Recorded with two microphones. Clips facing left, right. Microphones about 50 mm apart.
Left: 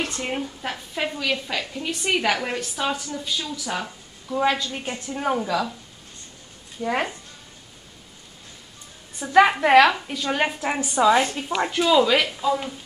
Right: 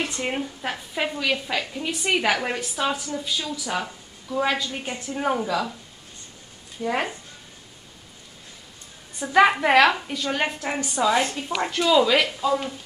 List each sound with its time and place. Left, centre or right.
0.0 s a woman's voice: centre
6.8 s a woman's voice: centre
9.3 s a woman's voice: centre